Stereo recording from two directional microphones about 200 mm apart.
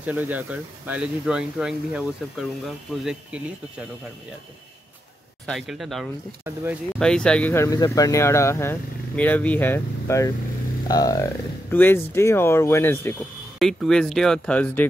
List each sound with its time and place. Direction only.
0.0 s speech: 10° right (ahead or behind)
5.5 s speech: centre (ahead or behind)
6.4 s speech: 10° right (ahead or behind)
7.0 s speech: 5° left (ahead or behind)